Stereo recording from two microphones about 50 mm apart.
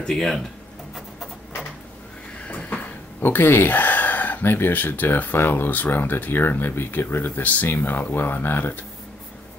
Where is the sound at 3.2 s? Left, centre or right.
Left.